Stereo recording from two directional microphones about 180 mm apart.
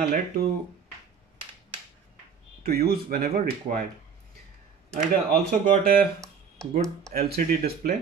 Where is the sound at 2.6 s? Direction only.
55° right (ahead or behind).